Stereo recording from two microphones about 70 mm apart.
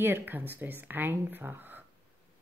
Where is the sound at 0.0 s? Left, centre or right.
Right.